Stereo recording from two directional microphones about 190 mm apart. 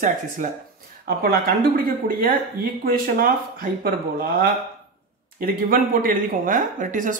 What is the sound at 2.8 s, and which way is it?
Speech, 50° right (ahead or behind).